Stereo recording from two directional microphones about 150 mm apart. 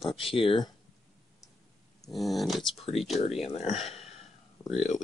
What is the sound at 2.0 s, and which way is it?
Dog, centre (ahead or behind).